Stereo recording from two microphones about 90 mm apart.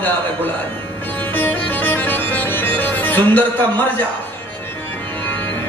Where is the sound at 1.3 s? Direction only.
20° left (ahead or behind).